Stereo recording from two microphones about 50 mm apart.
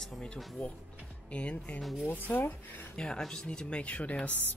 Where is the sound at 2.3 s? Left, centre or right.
Left.